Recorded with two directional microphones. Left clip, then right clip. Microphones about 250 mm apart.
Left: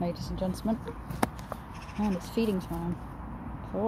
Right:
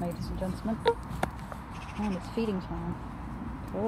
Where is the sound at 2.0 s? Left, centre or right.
Centre.